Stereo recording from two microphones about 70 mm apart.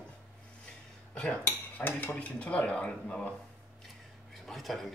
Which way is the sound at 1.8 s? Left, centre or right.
Left.